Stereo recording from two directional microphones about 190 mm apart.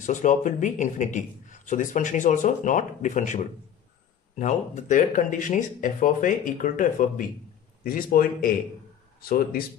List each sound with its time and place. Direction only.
0.0 s a man's voice: 40° left (ahead or behind)